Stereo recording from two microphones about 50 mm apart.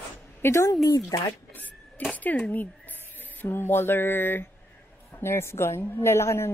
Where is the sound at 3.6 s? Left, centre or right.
Left.